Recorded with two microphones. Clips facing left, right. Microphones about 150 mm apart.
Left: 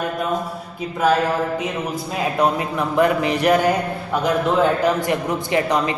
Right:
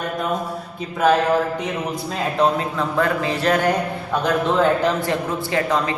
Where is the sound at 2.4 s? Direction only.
15° left (ahead or behind).